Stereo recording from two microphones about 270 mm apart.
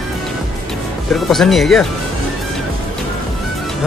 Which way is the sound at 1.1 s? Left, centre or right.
Centre.